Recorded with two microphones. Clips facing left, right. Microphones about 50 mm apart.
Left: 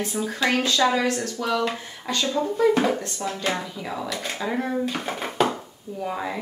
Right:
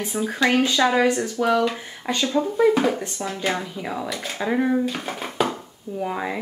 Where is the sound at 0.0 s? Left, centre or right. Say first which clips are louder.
Right 2 dB; centre.